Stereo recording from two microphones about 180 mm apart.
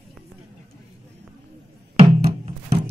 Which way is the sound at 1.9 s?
35° right (ahead or behind).